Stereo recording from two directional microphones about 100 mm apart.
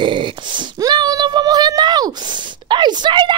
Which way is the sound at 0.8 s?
40° right (ahead or behind).